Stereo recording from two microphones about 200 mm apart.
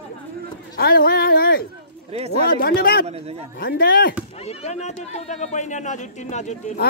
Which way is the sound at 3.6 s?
50° left (ahead or behind).